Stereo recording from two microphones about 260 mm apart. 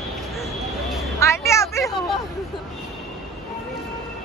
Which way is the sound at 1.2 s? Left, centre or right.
Centre.